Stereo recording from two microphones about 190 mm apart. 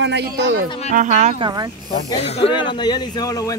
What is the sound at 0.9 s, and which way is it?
Speech, 40° right (ahead or behind).